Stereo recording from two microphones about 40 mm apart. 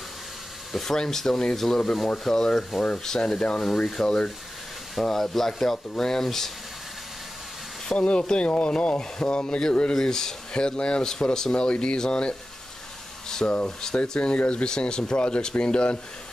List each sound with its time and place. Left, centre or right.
0.7 s speech: centre
7.9 s speech: left
10.5 s speech: left
13.7 s speech: centre
14.2 s speech: left